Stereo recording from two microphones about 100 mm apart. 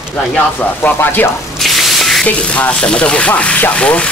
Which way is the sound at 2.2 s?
15° left (ahead or behind).